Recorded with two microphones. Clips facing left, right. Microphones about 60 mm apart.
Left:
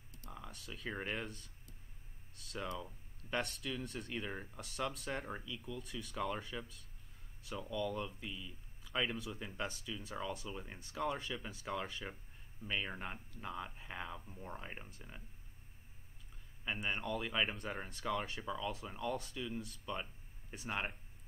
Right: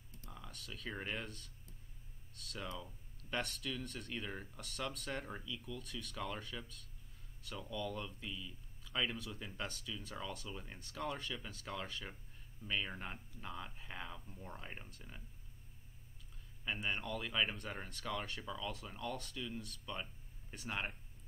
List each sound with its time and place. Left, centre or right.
0.3 s speech: centre
16.6 s speech: centre